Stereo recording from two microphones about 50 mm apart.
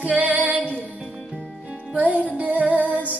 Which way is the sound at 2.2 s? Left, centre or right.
Right.